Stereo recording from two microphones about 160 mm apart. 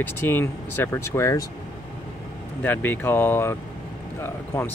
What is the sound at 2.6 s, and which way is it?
Speech, 10° left (ahead or behind).